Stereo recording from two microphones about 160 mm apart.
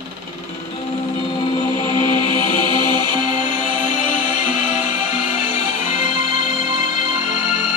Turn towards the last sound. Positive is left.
turn(degrees=45)  # may be behind; listen again after turning